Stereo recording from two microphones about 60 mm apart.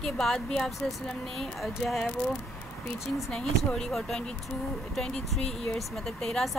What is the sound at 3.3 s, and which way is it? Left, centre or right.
Speech, centre.